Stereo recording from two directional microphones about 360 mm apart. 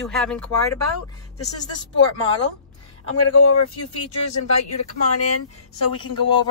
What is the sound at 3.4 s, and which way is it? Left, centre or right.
Speech, left.